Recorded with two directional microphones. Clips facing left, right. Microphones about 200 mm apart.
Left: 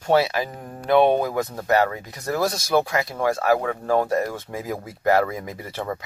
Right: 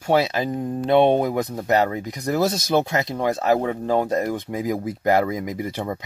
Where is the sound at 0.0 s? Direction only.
15° right (ahead or behind).